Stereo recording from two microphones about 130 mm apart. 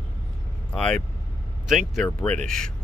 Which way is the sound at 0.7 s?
5° left (ahead or behind).